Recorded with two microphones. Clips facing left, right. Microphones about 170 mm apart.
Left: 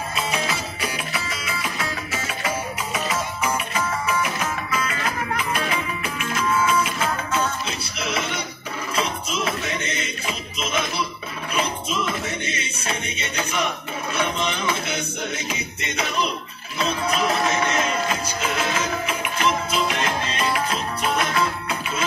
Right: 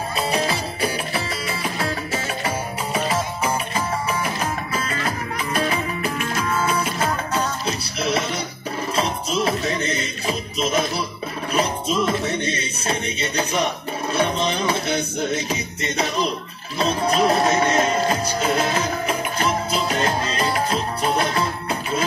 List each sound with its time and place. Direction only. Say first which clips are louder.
0.1 s music: right 5 dB; 35° right (ahead or behind)